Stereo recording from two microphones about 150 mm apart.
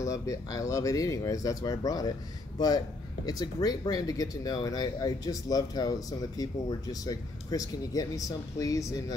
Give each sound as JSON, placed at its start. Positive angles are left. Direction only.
{"t": 0.0, "sound": "speech", "side_deg": 20}
{"t": 3.3, "sound": "speech", "side_deg": 25}